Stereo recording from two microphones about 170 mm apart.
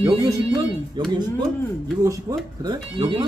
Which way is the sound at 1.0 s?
25° right (ahead or behind).